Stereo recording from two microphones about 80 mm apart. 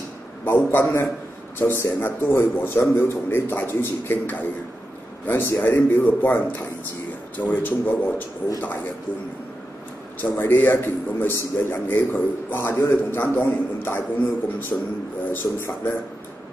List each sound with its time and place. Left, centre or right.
0.6 s a man's voice: left
10.2 s a man's voice: left